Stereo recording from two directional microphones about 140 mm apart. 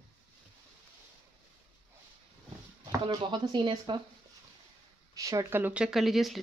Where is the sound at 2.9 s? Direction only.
30° right (ahead or behind).